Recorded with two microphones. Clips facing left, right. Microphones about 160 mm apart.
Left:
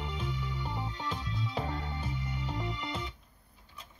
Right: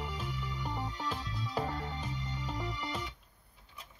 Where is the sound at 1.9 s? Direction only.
5° left (ahead or behind).